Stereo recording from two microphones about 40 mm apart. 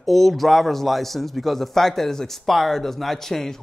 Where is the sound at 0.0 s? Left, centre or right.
Centre.